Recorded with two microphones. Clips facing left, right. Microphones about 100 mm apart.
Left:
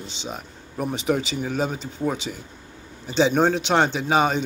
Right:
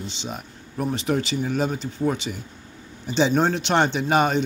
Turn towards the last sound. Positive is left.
turn(degrees=0)  # may be behind; listen again after turning